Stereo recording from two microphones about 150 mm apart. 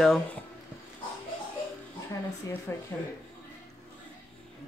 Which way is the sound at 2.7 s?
15° left (ahead or behind).